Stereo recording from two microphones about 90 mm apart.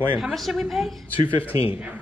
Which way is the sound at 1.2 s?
80° left.